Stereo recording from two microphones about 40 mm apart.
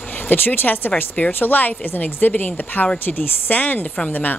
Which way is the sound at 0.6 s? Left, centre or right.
Left.